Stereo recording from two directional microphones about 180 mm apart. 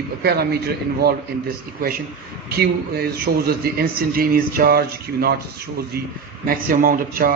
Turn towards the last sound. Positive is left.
turn(degrees=-50)  # may be behind; listen again after turning